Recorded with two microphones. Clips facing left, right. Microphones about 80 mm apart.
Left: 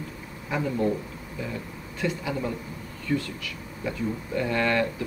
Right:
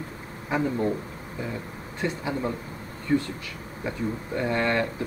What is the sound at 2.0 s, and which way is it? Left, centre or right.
Speech, right.